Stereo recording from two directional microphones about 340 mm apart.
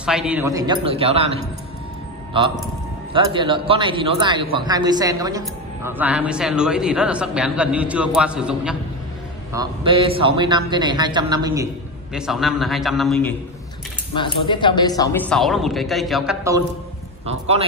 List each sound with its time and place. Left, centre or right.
0.0 s a man's voice: centre
9.5 s a man's voice: centre
14.1 s speech: centre
17.3 s a man's voice: centre